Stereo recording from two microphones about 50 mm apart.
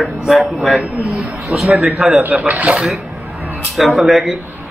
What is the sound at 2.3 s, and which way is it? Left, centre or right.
Speech, right.